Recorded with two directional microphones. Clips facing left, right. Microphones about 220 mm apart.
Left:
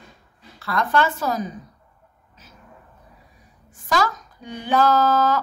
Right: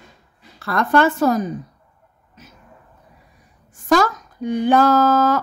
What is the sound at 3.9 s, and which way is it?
Speech, 50° right (ahead or behind).